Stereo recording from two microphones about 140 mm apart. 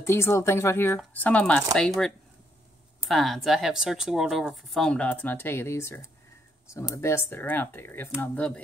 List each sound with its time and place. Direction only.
0.0 s speech: 20° left (ahead or behind)